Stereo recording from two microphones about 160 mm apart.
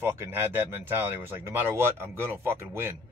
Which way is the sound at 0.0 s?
15° right (ahead or behind).